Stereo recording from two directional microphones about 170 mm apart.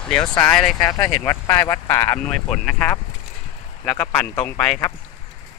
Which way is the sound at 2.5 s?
5° left (ahead or behind).